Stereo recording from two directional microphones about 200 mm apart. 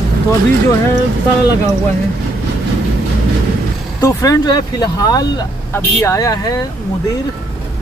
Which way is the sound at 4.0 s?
15° left (ahead or behind).